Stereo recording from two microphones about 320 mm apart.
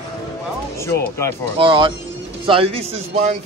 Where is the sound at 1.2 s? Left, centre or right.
Centre.